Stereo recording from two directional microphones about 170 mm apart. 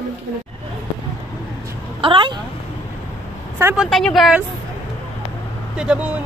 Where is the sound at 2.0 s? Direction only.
30° right (ahead or behind).